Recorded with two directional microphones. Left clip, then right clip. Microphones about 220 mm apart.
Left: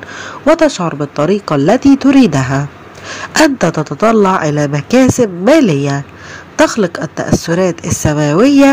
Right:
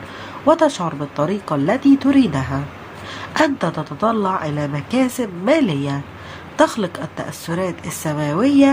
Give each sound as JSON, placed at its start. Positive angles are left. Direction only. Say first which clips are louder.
{"t": 0.5, "sound": "speech", "louder": "left 5 dB", "side_deg": 20}